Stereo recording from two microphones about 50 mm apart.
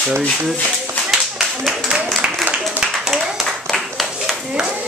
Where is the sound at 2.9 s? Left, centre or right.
Centre.